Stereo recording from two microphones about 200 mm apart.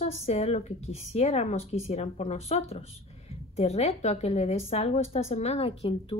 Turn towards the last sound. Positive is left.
turn(degrees=30)  # may be behind; listen again after turning